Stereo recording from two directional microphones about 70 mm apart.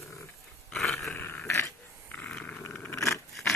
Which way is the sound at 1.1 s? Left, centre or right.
Left.